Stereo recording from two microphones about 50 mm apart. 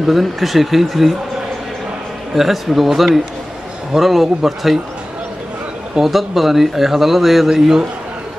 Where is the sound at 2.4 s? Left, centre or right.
Centre.